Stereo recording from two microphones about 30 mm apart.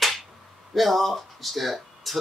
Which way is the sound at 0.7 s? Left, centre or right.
Centre.